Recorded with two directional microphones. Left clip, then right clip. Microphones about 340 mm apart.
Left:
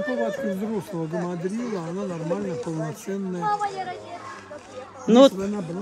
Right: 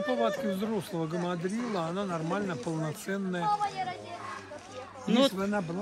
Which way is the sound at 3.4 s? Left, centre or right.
Left.